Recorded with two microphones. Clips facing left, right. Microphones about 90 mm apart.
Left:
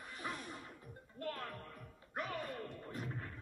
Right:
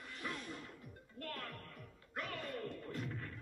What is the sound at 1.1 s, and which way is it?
Music, 25° left (ahead or behind).